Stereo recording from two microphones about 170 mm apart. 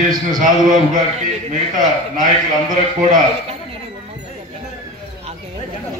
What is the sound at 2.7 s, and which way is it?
Speech, 50° right (ahead or behind).